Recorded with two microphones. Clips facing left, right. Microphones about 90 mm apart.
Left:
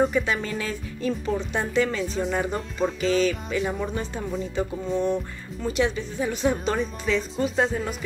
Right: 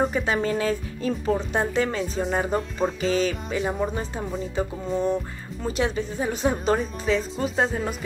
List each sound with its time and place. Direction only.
0.0 s speech: 35° right (ahead or behind)
4.9 s speech: 5° right (ahead or behind)
5.6 s speech: 35° right (ahead or behind)